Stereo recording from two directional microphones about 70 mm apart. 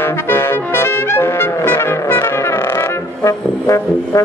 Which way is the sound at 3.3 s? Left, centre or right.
Left.